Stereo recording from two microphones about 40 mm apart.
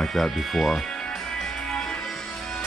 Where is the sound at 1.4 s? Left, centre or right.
Centre.